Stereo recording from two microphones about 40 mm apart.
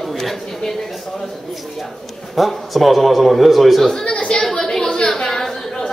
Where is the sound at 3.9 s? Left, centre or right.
Left.